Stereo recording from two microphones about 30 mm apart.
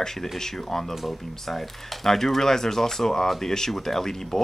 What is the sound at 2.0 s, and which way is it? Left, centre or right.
Speech, centre.